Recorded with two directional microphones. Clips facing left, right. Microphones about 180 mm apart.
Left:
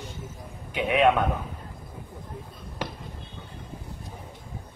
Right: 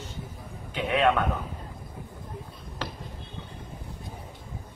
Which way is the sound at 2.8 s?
10° left (ahead or behind).